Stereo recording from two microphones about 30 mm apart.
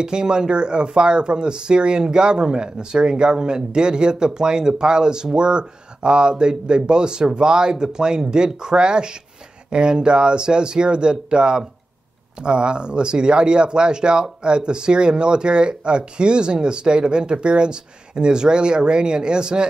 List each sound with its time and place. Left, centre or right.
0.0 s speech: right